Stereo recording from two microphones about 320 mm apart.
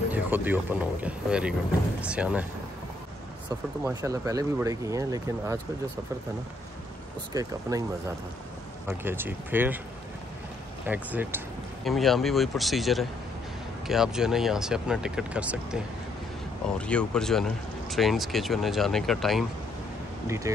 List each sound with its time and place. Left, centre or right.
0.1 s speech: centre
4.0 s speech: centre
7.3 s speech: centre
8.8 s speech: centre
10.9 s speech: centre